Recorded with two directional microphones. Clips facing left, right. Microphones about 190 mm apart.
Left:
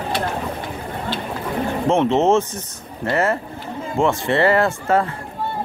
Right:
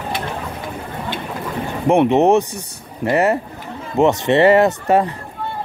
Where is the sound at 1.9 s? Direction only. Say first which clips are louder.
Right 4 dB; 15° right (ahead or behind).